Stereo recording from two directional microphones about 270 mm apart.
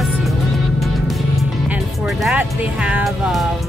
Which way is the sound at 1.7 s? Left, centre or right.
Centre.